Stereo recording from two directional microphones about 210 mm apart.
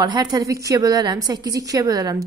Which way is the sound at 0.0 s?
20° right (ahead or behind).